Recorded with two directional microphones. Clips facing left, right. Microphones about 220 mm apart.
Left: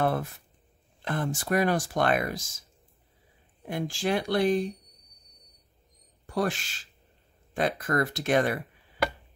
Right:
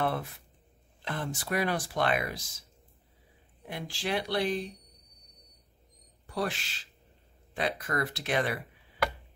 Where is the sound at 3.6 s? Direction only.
45° left (ahead or behind).